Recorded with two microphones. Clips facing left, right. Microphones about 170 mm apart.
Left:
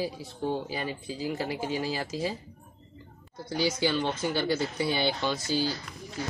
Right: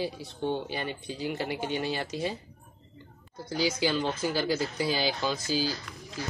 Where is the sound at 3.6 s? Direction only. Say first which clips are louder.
Even; centre (ahead or behind).